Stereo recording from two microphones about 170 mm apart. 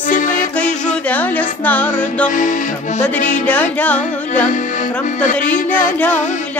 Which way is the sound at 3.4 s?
10° left (ahead or behind).